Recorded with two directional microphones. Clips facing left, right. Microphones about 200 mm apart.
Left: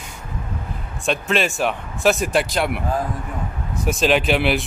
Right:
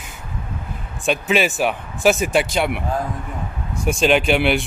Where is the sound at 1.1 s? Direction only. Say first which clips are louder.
Right 2 dB; centre (ahead or behind).